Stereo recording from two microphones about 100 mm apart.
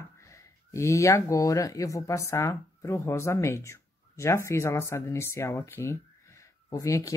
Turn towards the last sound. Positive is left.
turn(degrees=35)  # may be behind; listen again after turning